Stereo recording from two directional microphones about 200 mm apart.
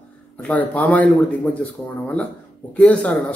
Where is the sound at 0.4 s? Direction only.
5° left (ahead or behind).